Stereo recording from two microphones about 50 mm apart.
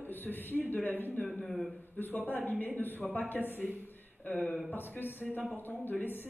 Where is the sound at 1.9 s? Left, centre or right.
Left.